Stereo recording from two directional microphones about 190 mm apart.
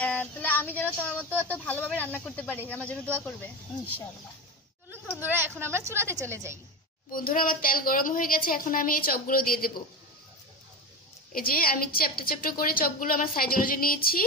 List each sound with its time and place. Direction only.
0.0 s speech: 5° left (ahead or behind)
5.2 s a woman's voice: 10° right (ahead or behind)
7.1 s a woman's voice: 50° left (ahead or behind)
11.3 s a woman's voice: 50° left (ahead or behind)